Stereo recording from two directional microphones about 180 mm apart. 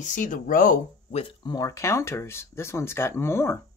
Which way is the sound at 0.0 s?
45° left (ahead or behind).